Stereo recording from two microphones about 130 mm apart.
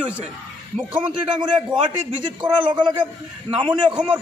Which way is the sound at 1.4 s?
35° right (ahead or behind).